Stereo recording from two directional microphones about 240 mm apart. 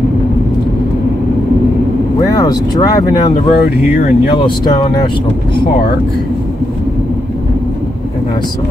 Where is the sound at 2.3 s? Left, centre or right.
Centre.